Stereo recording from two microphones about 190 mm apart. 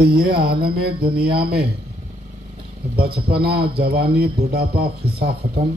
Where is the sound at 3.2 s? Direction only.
55° right (ahead or behind).